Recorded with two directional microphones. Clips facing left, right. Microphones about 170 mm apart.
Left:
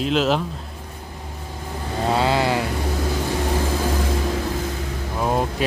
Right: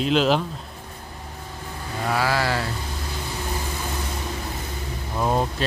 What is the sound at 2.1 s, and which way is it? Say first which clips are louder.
Mantra: left 3 dB; 25° left (ahead or behind).